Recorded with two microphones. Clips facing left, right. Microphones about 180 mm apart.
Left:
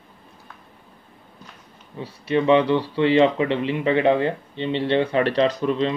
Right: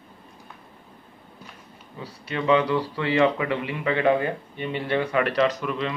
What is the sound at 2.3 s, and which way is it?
Speech, 25° left (ahead or behind).